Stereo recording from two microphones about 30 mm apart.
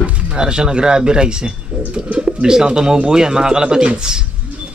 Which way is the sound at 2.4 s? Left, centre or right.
Right.